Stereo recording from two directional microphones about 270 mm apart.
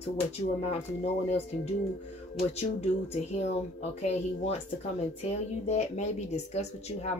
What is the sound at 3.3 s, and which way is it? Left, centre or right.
Speech, left.